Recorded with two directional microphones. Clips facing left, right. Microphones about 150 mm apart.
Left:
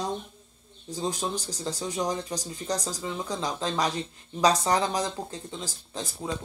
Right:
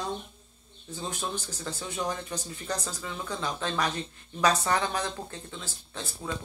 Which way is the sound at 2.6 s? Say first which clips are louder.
Left 5 dB; 15° left (ahead or behind).